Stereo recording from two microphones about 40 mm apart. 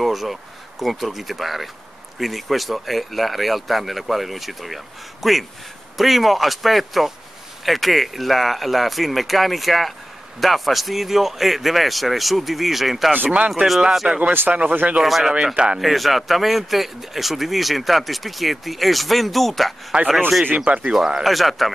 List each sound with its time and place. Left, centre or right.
0.0 s speech: centre
14.0 s speech: right
14.5 s speech: right
15.0 s speech: centre
15.3 s speech: right
15.8 s speech: centre
19.9 s speech: right
20.5 s speech: right
20.9 s speech: centre
21.2 s speech: centre